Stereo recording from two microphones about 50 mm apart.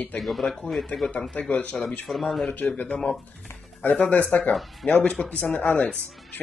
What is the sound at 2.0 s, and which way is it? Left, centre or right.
Speech, centre.